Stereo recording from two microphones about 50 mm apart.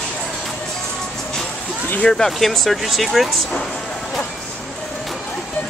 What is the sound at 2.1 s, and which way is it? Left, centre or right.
Speech, centre.